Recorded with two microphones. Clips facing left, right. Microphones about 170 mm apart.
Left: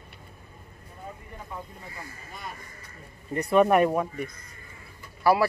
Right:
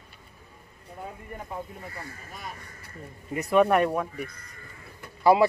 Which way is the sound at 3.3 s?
5° right (ahead or behind).